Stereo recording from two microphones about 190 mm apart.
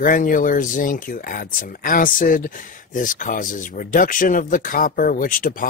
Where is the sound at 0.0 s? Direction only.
45° left (ahead or behind).